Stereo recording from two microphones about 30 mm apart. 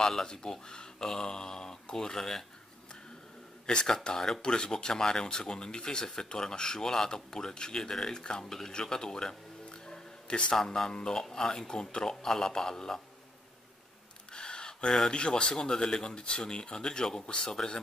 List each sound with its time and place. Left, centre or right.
0.2 s speech: left
3.6 s speech: left
10.2 s a man's voice: left
10.6 s speech: centre
10.9 s speech: left
11.2 s speech: centre
14.3 s gasp: left
15.0 s speech: left
15.5 s speech: left